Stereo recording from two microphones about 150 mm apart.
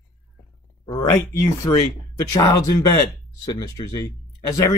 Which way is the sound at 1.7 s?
45° left (ahead or behind).